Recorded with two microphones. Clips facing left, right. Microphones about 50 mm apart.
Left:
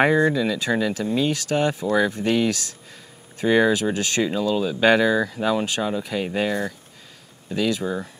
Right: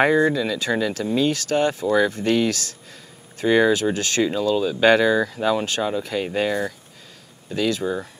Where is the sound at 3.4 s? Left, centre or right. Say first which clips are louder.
Right 1 dB; centre.